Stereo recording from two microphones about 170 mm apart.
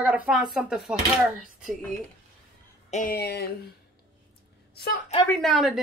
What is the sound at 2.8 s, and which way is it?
Speech, 45° left (ahead or behind).